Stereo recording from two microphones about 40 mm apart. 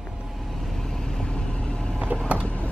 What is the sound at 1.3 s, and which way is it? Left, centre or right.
Vehicle, left.